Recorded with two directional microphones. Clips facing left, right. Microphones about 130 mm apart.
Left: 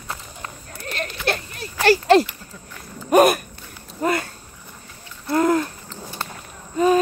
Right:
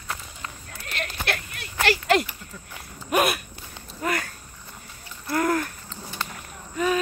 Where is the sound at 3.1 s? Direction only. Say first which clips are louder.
Left 8 dB; 45° left (ahead or behind).